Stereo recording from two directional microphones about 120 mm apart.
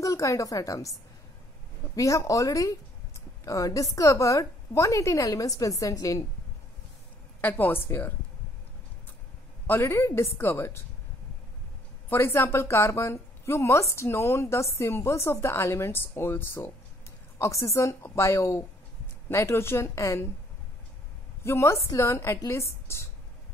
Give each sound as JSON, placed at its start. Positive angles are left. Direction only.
{"t": 0.0, "sound": "a woman's voice", "side_deg": 25}
{"t": 2.0, "sound": "a woman's voice", "side_deg": 25}
{"t": 7.4, "sound": "a woman's voice", "side_deg": 15}
{"t": 9.7, "sound": "a woman's voice", "side_deg": 20}
{"t": 12.1, "sound": "a woman's voice", "side_deg": 15}
{"t": 21.5, "sound": "a woman's voice", "side_deg": 25}